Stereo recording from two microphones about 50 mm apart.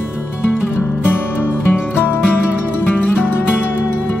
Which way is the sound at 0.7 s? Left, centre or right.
Left.